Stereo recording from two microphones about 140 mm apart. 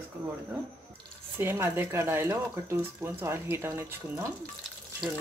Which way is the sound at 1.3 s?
15° right (ahead or behind).